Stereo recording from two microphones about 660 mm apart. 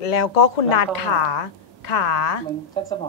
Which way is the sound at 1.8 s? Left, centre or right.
Left.